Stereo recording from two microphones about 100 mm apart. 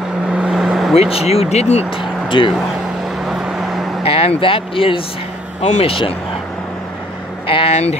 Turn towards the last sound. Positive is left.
turn(degrees=90)